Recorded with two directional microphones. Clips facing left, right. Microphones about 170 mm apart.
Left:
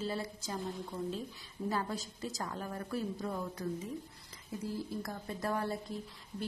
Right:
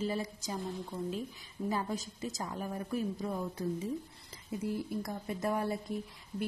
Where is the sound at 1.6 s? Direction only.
15° right (ahead or behind).